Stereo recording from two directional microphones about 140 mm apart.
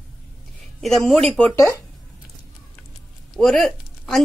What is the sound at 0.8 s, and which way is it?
Speech, centre (ahead or behind).